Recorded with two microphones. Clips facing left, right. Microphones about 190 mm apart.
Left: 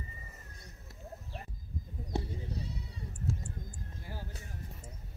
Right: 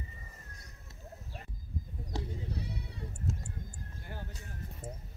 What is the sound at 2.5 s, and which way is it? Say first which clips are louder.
Bleat: right 1 dB; 60° right (ahead or behind).